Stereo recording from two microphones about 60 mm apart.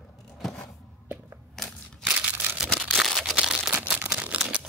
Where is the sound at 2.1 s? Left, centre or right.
Right.